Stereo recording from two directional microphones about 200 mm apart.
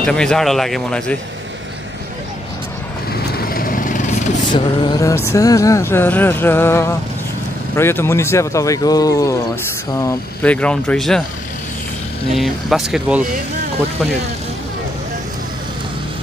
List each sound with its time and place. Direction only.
0.0 s speech: 5° left (ahead or behind)
3.3 s vehicle: 45° left (ahead or behind)
4.5 s a sound: 20° left (ahead or behind)
9.9 s speech: 10° left (ahead or behind)
12.4 s speech: centre (ahead or behind)